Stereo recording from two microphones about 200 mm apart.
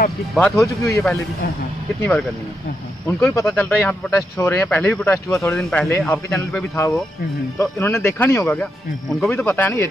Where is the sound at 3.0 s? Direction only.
15° left (ahead or behind).